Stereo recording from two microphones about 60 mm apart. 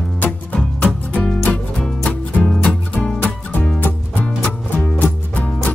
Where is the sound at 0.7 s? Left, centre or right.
Centre.